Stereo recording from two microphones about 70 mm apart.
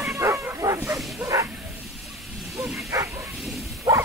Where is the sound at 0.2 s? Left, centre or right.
Right.